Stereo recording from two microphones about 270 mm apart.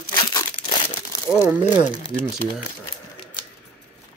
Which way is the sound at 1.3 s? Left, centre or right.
Centre.